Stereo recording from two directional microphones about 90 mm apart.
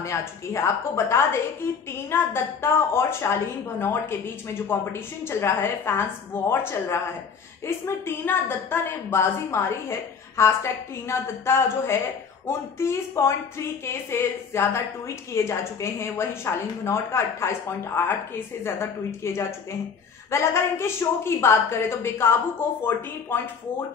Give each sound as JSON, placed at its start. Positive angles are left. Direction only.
{"t": 0.0, "sound": "a woman's voice", "side_deg": 35}